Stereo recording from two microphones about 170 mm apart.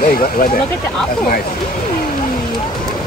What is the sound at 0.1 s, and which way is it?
Speech, 60° left (ahead or behind).